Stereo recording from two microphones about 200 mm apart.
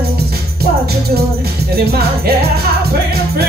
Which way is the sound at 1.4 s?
50° right (ahead or behind).